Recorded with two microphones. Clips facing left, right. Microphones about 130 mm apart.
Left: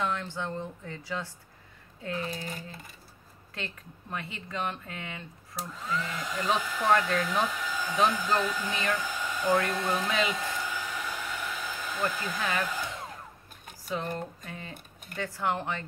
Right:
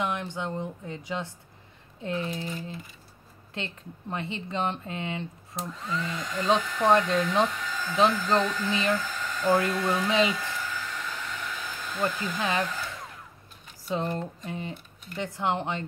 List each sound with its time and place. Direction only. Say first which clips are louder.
0.0 s speech: right 2 dB; 15° right (ahead or behind)
3.5 s speech: right 3 dB; 25° right (ahead or behind)
5.6 s hair dryer: right 1 dB; centre (ahead or behind)
6.9 s speech: right 3 dB; 25° right (ahead or behind)
7.4 s speech: right 1 dB; 5° left (ahead or behind)
8.9 s hair dryer: right 2 dB; 10° left (ahead or behind)
10.0 s speech: right 5 dB; 25° right (ahead or behind)
10.3 s hair dryer: even; 15° left (ahead or behind)
12.4 s speech: right 4 dB; 20° right (ahead or behind)
12.6 s hair dryer: even; 10° left (ahead or behind)
13.8 s speech: right 4 dB; 25° right (ahead or behind)